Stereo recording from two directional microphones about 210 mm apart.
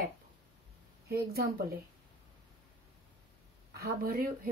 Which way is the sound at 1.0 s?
45° right (ahead or behind).